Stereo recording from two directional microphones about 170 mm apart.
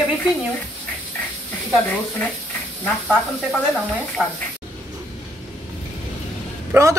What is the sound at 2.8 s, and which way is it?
Speech, 5° left (ahead or behind).